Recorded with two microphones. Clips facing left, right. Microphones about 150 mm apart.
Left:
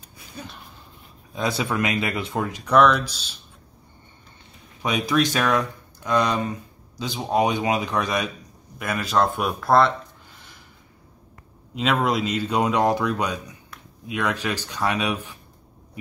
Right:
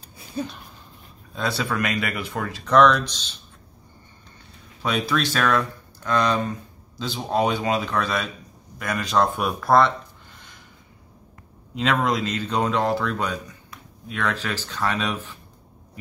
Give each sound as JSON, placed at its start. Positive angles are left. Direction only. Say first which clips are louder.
{"t": 1.3, "sound": "speech", "louder": "left 1 dB", "side_deg": 15}
{"t": 2.7, "sound": "speech", "louder": "right 1 dB", "side_deg": 5}
{"t": 4.8, "sound": "speech", "louder": "left 2 dB", "side_deg": 15}
{"t": 8.7, "sound": "speech", "louder": "even", "side_deg": 5}
{"t": 11.7, "sound": "speech", "louder": "even", "side_deg": 5}